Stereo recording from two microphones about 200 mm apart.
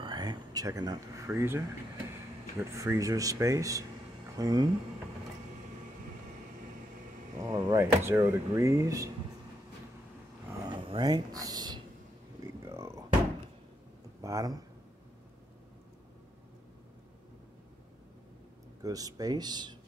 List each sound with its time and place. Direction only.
0.0 s speech: 20° right (ahead or behind)
2.6 s speech: 15° right (ahead or behind)
7.3 s speech: 15° right (ahead or behind)
10.6 s a sound: 20° right (ahead or behind)
12.6 s music: 15° right (ahead or behind)
14.2 s speech: 15° right (ahead or behind)
18.8 s speech: 20° right (ahead or behind)